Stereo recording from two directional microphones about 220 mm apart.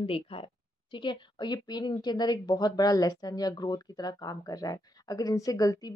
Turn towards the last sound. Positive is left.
turn(degrees=15)  # may be behind; listen again after turning